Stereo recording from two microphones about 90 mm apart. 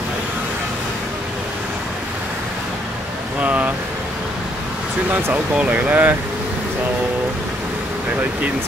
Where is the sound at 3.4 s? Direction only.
15° right (ahead or behind).